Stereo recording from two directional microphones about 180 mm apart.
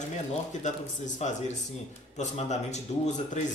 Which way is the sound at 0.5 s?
40° left (ahead or behind).